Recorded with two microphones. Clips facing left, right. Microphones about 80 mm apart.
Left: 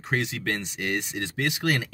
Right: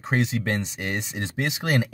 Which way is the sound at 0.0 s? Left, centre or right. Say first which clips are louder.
Right 3 dB; right.